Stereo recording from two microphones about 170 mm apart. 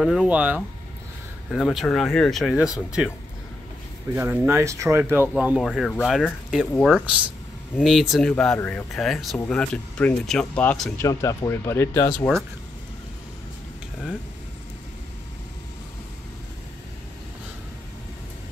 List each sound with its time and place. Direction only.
0.0 s speech: 5° right (ahead or behind)
4.1 s speech: 10° right (ahead or behind); by 12.1 s 15° left (ahead or behind)